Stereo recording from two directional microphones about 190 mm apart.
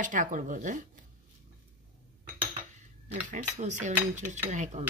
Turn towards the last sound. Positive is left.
turn(degrees=-40)  # may be behind; listen again after turning